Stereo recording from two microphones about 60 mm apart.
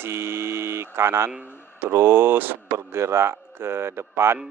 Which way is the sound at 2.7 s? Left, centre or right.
Right.